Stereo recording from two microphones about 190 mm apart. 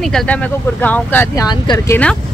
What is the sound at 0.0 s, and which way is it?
Speech, 5° left (ahead or behind).